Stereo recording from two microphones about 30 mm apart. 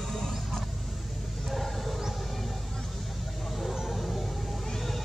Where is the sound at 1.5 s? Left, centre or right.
Centre.